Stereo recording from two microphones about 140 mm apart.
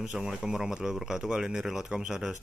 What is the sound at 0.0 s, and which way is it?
Speech, 5° right (ahead or behind).